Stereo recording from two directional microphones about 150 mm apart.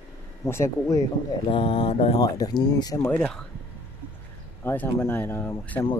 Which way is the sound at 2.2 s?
25° left (ahead or behind).